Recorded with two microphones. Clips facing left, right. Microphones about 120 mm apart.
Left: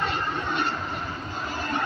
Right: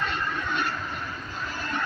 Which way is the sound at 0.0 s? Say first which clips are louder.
Left 2 dB; 30° left (ahead or behind).